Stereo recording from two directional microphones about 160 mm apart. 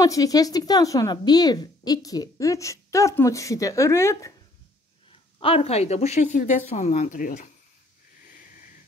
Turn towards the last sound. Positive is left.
turn(degrees=55)  # may be behind; listen again after turning